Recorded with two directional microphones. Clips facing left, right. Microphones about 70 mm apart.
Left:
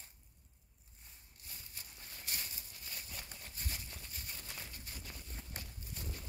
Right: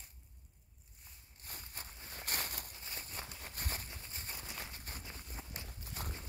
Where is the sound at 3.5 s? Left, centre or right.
Right.